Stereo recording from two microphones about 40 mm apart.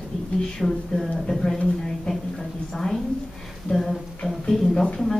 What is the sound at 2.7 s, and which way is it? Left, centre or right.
Speech, centre.